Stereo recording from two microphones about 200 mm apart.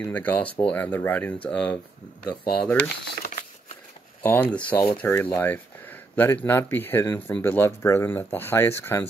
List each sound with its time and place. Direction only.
0.0 s speech: 5° left (ahead or behind)
3.2 s a sound: 40° left (ahead or behind)
4.2 s speech: 10° left (ahead or behind)